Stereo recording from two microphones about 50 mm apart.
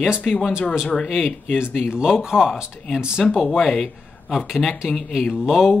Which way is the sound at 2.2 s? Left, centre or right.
Centre.